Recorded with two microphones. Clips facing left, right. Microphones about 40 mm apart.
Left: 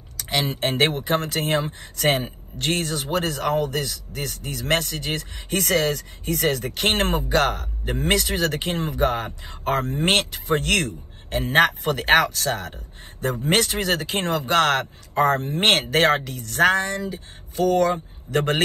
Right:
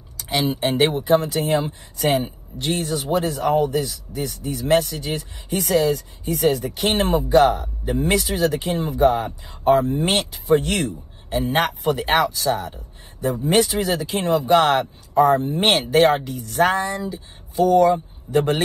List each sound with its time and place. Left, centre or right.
0.2 s speech: left